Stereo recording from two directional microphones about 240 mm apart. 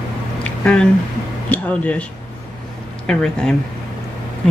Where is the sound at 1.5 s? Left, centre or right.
Centre.